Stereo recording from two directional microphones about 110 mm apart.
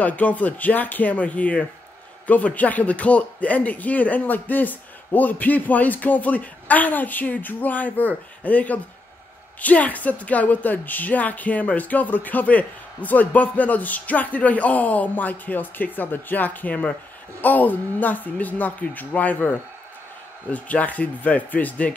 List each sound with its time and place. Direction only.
0.0 s a woman's voice: 15° left (ahead or behind)